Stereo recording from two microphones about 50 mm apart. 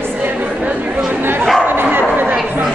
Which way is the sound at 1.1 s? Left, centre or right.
Right.